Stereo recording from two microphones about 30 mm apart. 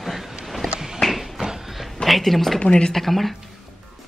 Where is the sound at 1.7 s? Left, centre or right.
Centre.